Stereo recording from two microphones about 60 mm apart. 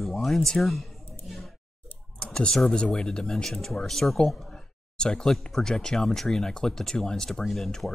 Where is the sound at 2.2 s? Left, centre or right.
Centre.